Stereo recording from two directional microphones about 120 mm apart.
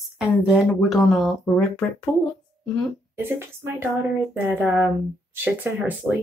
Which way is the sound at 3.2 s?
20° right (ahead or behind).